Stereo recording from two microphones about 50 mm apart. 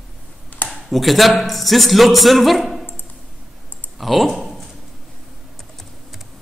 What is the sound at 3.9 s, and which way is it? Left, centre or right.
Typing, centre.